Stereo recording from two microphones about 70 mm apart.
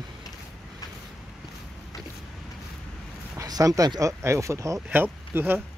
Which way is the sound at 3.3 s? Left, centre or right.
Right.